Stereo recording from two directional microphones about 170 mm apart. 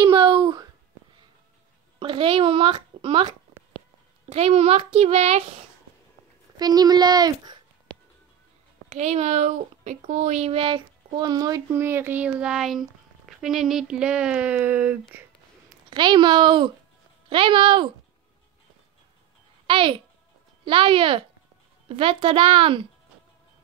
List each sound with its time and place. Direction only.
0.0 s a sound: 30° right (ahead or behind)
2.0 s a child's voice: 30° right (ahead or behind)
6.5 s speech: 25° right (ahead or behind)
8.8 s speech: 45° right (ahead or behind); by 15.0 s 10° right (ahead or behind)
15.9 s speech: 25° right (ahead or behind)
19.6 s a child's voice: 30° right (ahead or behind)